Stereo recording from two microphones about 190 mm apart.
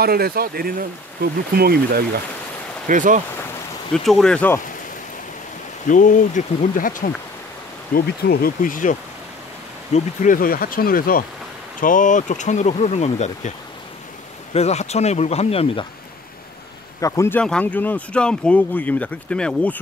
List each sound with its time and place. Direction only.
0.0 s speech: 55° right (ahead or behind)
2.9 s speech: 40° right (ahead or behind)
3.9 s speech: centre (ahead or behind)
5.9 s speech: 45° left (ahead or behind)
9.9 s speech: 45° left (ahead or behind)
14.5 s speech: 35° left (ahead or behind)
17.0 s speech: 15° left (ahead or behind)